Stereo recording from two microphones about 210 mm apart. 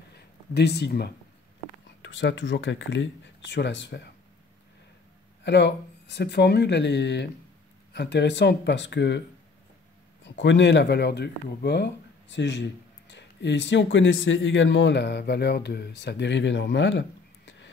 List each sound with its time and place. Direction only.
0.6 s speech: 50° left (ahead or behind)
5.4 s speech: 55° left (ahead or behind)
10.2 s speech: 60° left (ahead or behind)